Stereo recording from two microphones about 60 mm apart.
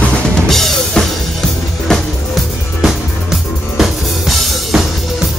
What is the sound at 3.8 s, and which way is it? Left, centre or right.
Music, centre.